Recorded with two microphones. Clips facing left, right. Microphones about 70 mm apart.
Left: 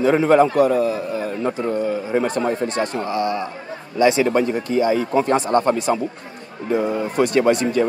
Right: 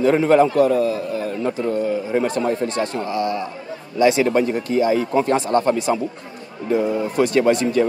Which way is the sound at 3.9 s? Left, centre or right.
Centre.